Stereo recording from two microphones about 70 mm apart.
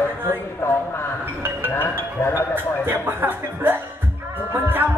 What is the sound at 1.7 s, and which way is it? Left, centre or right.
Speech, left.